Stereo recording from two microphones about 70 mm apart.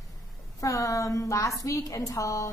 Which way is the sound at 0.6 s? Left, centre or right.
Left.